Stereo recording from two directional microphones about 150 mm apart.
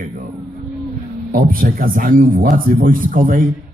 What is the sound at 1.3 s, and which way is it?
A man's voice, 70° right (ahead or behind).